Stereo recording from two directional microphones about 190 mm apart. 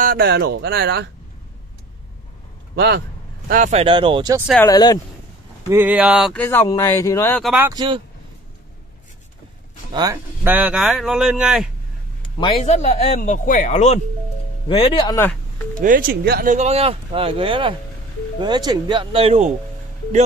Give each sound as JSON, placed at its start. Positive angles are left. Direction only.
{"t": 0.0, "sound": "speech", "side_deg": -55}
{"t": 2.7, "sound": "a man's voice", "side_deg": -60}
{"t": 3.4, "sound": "speech", "side_deg": -45}
{"t": 3.8, "sound": "speech", "side_deg": -25}
{"t": 4.6, "sound": "speech", "side_deg": 20}
{"t": 5.7, "sound": "speech", "side_deg": -10}
{"t": 6.3, "sound": "speech", "side_deg": 10}
{"t": 7.4, "sound": "speech", "side_deg": -10}
{"t": 7.7, "sound": "speech", "side_deg": -25}
{"t": 9.9, "sound": "speech", "side_deg": -15}
{"t": 12.4, "sound": "speech", "side_deg": 35}
{"t": 14.7, "sound": "speech", "side_deg": 25}
{"t": 15.8, "sound": "speech", "side_deg": -45}